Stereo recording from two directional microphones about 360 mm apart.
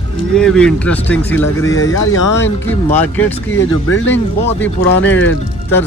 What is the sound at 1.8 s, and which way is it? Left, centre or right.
Speech, left.